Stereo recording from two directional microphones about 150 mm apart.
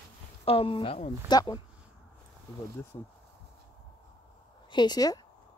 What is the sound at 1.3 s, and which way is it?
Speech, 25° left (ahead or behind).